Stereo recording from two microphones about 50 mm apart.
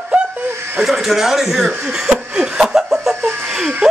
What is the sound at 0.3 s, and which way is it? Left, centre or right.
Chuckle, right.